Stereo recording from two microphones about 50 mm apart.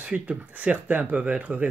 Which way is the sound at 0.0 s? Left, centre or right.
Right.